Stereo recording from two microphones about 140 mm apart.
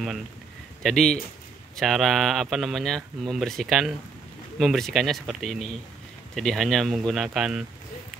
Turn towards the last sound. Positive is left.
turn(degrees=-5)  # may be behind; listen again after turning